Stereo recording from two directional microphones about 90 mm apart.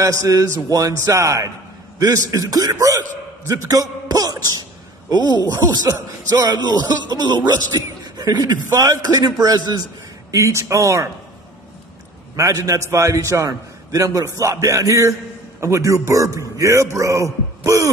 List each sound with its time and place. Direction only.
0.0 s a man's voice: 35° right (ahead or behind)
10.3 s a man's voice: 35° right (ahead or behind)
12.4 s a man's voice: 40° right (ahead or behind)